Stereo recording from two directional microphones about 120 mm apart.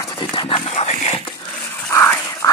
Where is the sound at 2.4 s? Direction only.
30° left (ahead or behind).